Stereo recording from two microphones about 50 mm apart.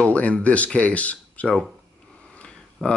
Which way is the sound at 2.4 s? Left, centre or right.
Left.